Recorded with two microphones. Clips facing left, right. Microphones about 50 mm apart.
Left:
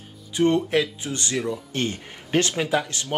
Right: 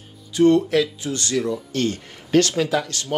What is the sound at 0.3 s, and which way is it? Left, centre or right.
Speech, left.